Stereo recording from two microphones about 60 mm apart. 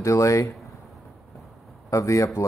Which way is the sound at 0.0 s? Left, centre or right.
Left.